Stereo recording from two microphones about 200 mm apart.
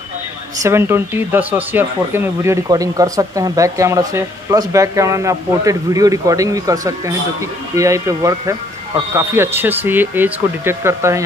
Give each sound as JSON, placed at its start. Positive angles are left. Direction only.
{"t": 0.6, "sound": "speech", "side_deg": -15}